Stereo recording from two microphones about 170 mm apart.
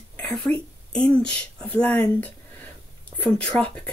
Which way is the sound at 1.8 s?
10° left (ahead or behind).